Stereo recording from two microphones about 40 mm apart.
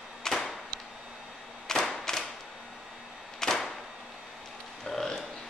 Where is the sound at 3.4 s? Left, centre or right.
Centre.